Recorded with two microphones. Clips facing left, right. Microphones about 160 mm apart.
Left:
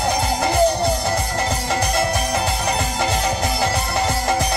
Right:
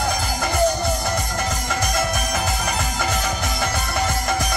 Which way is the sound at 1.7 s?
30° left (ahead or behind).